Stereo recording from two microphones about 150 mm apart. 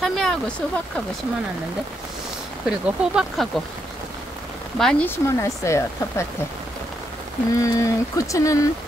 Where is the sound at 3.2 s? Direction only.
Centre (ahead or behind).